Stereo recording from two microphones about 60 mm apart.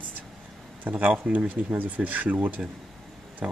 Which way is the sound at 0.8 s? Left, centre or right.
Right.